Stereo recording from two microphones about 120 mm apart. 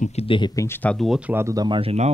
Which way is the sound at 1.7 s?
55° right (ahead or behind).